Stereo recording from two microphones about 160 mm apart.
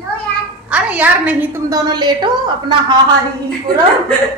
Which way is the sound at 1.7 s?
25° right (ahead or behind).